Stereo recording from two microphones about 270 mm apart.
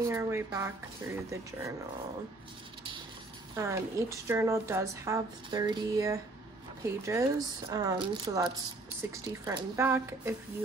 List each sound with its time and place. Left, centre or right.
0.0 s speech: centre
3.5 s speech: centre